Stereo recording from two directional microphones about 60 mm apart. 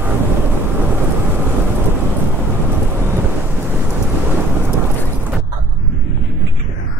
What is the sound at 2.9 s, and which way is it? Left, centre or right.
Thunder, right.